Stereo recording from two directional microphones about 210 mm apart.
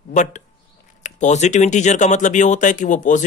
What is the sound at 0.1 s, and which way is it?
Speech, 35° left (ahead or behind).